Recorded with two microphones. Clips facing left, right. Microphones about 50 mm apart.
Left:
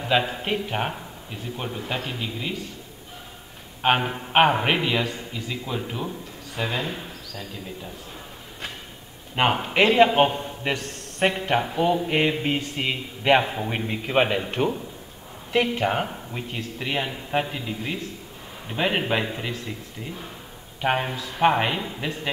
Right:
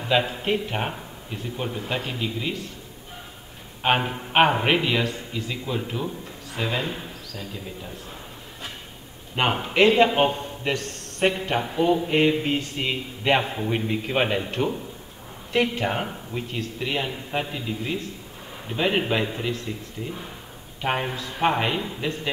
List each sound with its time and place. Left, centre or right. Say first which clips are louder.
0.4 s a man's voice: right 1 dB; centre
3.8 s a man's voice: left 1 dB; centre
9.3 s a man's voice: left 2 dB; centre
11.6 s speech: right 1 dB; centre
20.8 s speech: left 2 dB; centre